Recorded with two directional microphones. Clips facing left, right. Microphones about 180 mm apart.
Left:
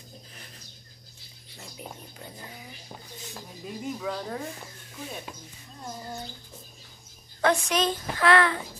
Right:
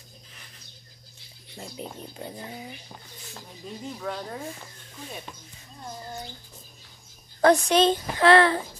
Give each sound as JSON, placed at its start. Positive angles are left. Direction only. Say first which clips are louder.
{"t": 1.6, "sound": "a sound", "louder": "right 5 dB", "side_deg": -25}
{"t": 3.6, "sound": "speech", "louder": "left 1 dB", "side_deg": 5}
{"t": 7.4, "sound": "a woman's voice", "louder": "right 6 dB", "side_deg": -30}